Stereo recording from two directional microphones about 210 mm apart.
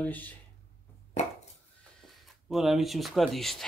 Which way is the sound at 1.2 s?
30° left (ahead or behind).